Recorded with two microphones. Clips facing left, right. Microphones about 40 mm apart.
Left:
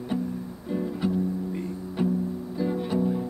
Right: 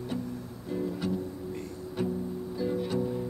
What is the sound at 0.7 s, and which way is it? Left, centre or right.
Music, centre.